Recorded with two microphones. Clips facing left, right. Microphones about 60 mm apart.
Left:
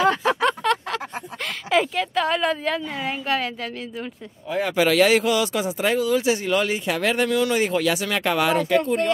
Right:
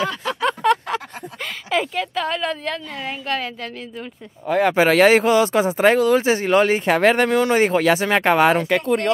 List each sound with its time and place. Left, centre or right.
0.4 s a sound: centre
1.7 s a woman's voice: centre
4.5 s speech: right
4.7 s speech: right
8.6 s speech: right